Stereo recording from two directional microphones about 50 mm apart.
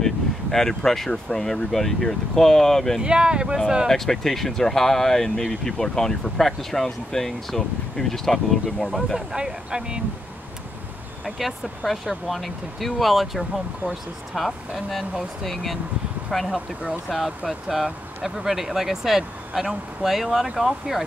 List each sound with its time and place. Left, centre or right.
0.0 s speech: centre
3.0 s speech: centre
3.9 s speech: centre
9.3 s speech: centre
11.2 s speech: centre